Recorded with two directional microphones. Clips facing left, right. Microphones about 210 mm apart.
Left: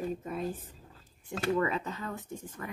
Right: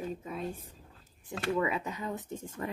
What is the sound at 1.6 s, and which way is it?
Speech, 10° right (ahead or behind).